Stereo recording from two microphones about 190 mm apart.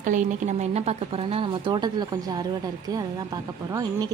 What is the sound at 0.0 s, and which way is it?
Speech, 40° right (ahead or behind).